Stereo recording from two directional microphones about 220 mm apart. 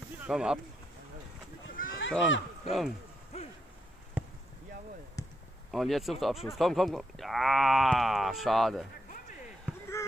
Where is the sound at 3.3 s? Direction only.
30° left (ahead or behind).